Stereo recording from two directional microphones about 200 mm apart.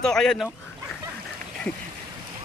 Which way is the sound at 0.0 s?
5° left (ahead or behind).